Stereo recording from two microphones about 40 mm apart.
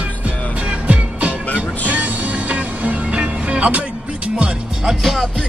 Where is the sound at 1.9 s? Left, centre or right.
Right.